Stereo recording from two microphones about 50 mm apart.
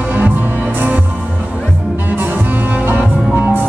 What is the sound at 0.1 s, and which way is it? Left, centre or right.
Music, right.